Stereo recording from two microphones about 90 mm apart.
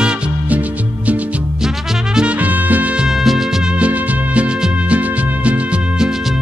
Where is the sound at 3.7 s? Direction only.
15° right (ahead or behind).